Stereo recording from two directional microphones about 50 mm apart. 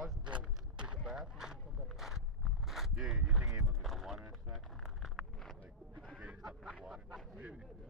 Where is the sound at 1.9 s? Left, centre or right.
Centre.